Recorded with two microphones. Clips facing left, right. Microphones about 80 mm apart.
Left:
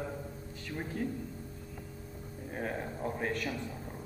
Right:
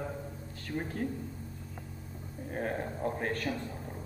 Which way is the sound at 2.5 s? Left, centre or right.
Right.